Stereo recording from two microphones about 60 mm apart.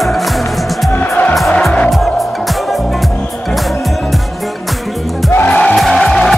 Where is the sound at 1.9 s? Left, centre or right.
Centre.